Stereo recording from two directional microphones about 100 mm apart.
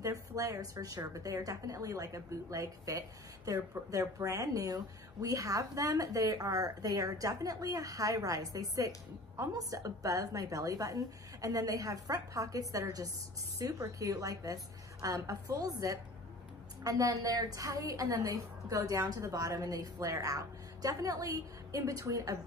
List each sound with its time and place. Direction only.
0.0 s a woman's voice: 35° right (ahead or behind)